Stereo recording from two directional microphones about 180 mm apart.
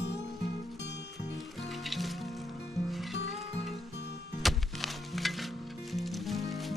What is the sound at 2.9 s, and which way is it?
Music, centre (ahead or behind).